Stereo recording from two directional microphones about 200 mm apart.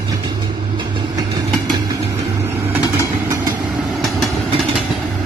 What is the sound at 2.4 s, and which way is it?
Vehicle, 10° right (ahead or behind).